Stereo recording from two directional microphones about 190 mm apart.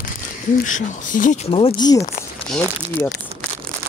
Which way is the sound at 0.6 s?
45° left (ahead or behind).